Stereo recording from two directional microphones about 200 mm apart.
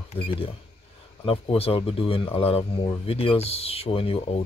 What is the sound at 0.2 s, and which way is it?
Speech, 25° left (ahead or behind).